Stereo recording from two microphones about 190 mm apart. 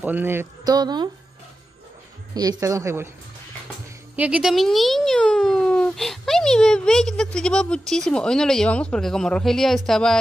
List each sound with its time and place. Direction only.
0.0 s speech: 10° right (ahead or behind)
2.3 s speech: 20° right (ahead or behind)
4.2 s a child's voice: 5° right (ahead or behind)